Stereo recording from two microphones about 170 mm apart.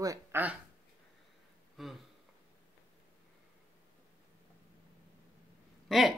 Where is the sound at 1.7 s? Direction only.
Centre (ahead or behind).